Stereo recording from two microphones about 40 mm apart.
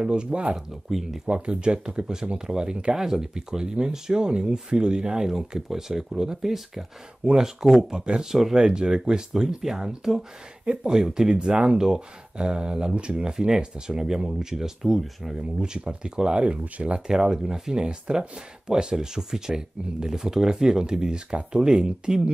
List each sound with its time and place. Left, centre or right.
0.0 s speech: right
0.8 s speech: centre
1.3 s speech: right
5.5 s speech: centre
8.0 s speech: right
8.3 s speech: centre
8.5 s speech: right
10.6 s speech: right
10.9 s speech: centre
11.5 s speech: right
11.8 s speech: centre
17.1 s speech: centre